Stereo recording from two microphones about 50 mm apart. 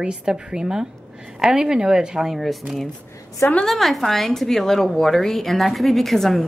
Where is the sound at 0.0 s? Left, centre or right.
Centre.